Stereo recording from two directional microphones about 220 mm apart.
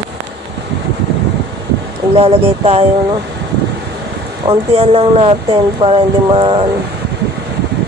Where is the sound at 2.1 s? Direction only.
25° right (ahead or behind).